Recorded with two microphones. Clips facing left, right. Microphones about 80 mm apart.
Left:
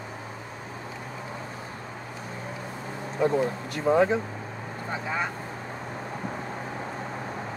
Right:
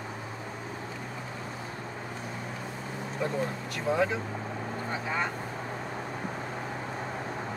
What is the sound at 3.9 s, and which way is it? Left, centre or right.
Speech, left.